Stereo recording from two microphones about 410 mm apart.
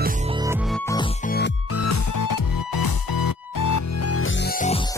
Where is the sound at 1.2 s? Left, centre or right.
Left.